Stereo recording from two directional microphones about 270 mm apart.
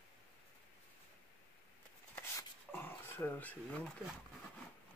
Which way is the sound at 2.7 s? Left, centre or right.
Centre.